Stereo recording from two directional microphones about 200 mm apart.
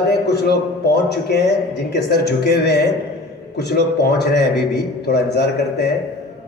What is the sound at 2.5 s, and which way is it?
A man's voice, 55° left (ahead or behind).